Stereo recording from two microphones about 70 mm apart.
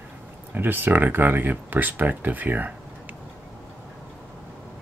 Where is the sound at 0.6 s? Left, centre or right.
Right.